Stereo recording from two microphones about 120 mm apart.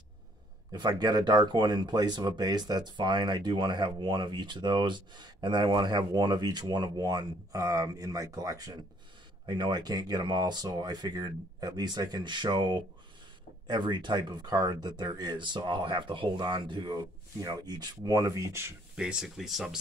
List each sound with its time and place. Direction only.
0.7 s speech: 35° right (ahead or behind)
18.9 s speech: 5° right (ahead or behind)